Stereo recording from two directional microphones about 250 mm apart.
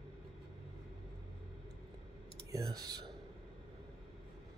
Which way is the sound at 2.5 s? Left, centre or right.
Centre.